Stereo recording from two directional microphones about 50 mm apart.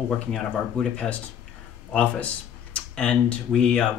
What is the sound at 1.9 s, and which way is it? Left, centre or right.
Speech, left.